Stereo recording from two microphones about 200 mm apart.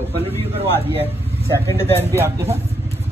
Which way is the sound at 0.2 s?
30° right (ahead or behind).